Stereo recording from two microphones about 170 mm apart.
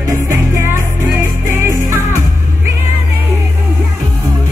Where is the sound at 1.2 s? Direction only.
15° right (ahead or behind).